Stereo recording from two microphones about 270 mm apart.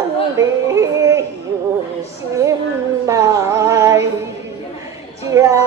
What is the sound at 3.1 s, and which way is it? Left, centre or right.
Music, centre.